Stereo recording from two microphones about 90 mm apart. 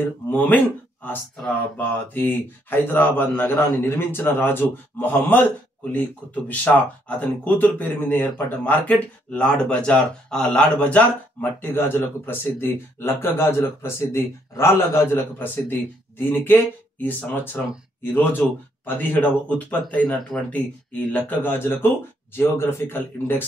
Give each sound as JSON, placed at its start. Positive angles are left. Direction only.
{"t": 0.3, "sound": "speech", "side_deg": 15}
{"t": 18.4, "sound": "speech", "side_deg": 5}
{"t": 18.9, "sound": "speech", "side_deg": 20}
{"t": 20.2, "sound": "speech", "side_deg": 0}
{"t": 21.1, "sound": "speech", "side_deg": 20}